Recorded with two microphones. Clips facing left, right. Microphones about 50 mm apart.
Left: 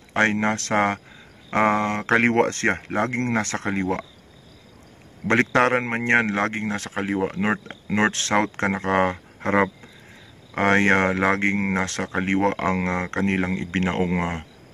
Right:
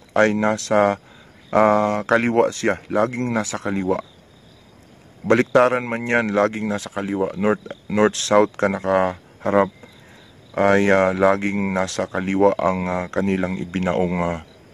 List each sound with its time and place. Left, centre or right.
0.1 s speech: left
2.2 s speech: left
5.3 s speech: left
6.5 s speech: left